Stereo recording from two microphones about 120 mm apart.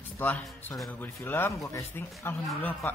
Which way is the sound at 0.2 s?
15° left (ahead or behind).